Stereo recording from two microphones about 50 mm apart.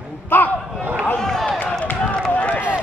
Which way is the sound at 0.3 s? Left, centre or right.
Left.